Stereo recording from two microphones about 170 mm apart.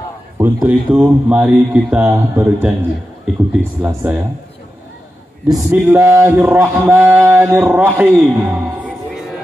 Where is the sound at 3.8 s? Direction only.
10° right (ahead or behind).